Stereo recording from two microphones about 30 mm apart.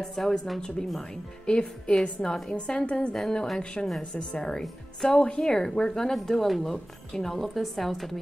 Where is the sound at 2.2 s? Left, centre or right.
Left.